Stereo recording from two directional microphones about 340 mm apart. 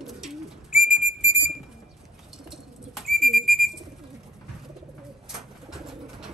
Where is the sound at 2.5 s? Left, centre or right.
Centre.